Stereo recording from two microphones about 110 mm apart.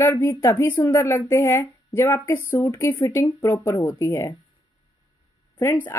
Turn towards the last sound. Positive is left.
turn(degrees=20)  # may be behind; listen again after turning